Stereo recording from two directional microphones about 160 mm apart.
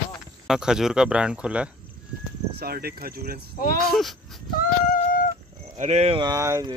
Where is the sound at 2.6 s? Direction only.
70° right (ahead or behind).